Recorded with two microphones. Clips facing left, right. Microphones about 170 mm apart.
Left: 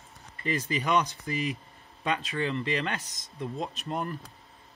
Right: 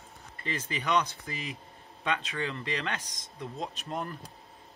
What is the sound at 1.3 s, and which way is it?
Speech, 65° left (ahead or behind).